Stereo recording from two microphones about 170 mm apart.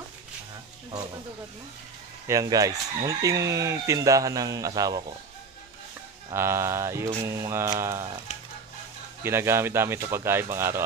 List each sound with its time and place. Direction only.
2.2 s speech: 20° right (ahead or behind)
6.3 s speech: 15° right (ahead or behind)
9.2 s speech: 15° right (ahead or behind)